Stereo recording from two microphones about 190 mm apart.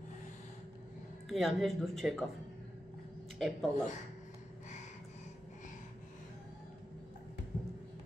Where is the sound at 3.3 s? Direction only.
Centre (ahead or behind).